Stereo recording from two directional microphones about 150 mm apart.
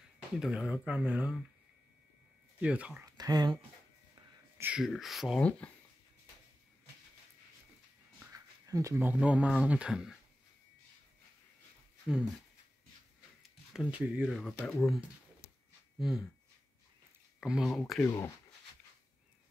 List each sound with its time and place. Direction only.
0.4 s speech: 5° right (ahead or behind)
2.6 s speech: 10° right (ahead or behind)
3.2 s speech: 25° right (ahead or behind)
4.1 s wheeze: 15° right (ahead or behind)
4.7 s speech: centre (ahead or behind)
8.3 s speech: 20° right (ahead or behind); by 10.1 s 5° right (ahead or behind)
13.4 s speech: 5° right (ahead or behind)
16.0 s speech: centre (ahead or behind)
17.4 s speech: 5° right (ahead or behind)